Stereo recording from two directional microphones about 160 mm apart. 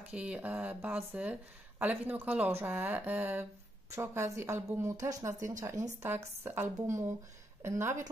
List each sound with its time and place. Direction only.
0.1 s speech: 10° right (ahead or behind)